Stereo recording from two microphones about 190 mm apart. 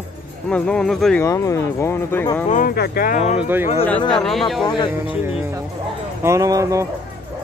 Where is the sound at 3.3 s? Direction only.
10° right (ahead or behind).